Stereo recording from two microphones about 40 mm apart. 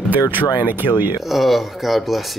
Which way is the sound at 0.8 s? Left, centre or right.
Right.